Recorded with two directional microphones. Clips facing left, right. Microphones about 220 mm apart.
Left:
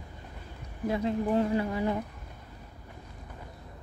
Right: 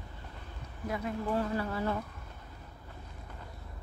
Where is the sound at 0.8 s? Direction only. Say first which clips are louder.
Left 6 dB; 25° left (ahead or behind).